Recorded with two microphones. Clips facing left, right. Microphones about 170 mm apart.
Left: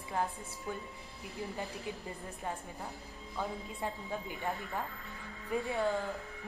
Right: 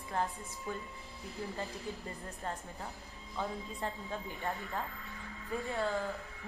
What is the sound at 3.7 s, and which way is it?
Speech, 15° left (ahead or behind).